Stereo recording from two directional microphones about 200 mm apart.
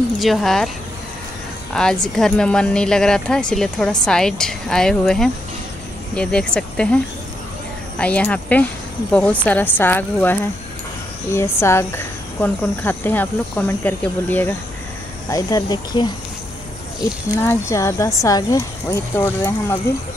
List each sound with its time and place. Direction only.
0.2 s a woman's voice: centre (ahead or behind)
1.7 s a woman's voice: 5° left (ahead or behind)
8.0 s speech: 5° left (ahead or behind)
17.4 s speech: 15° left (ahead or behind)